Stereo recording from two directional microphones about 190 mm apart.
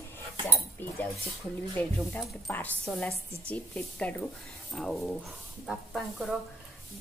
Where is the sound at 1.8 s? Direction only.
10° left (ahead or behind).